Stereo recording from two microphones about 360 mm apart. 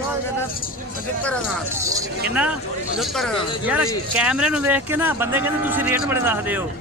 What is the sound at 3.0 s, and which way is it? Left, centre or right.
A man's voice, centre.